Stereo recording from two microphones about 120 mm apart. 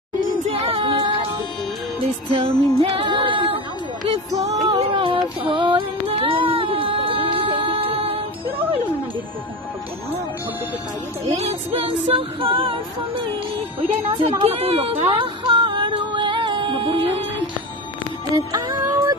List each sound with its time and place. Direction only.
0.5 s music: 50° right (ahead or behind)
2.3 s music: 50° right (ahead or behind)
11.2 s music: 60° right (ahead or behind)
13.7 s speech: 55° right (ahead or behind)
14.4 s music: 55° right (ahead or behind)
18.3 s music: 30° right (ahead or behind)